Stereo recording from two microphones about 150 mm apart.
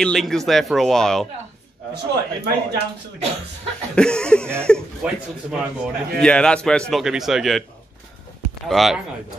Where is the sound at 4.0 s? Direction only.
5° left (ahead or behind).